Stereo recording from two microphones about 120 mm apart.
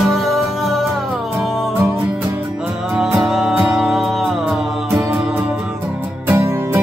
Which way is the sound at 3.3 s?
5° right (ahead or behind).